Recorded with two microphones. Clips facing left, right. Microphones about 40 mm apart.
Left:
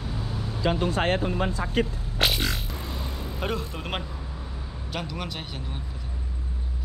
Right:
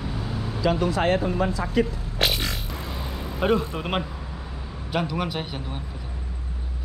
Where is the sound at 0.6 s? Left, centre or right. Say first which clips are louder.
Right 2 dB; left.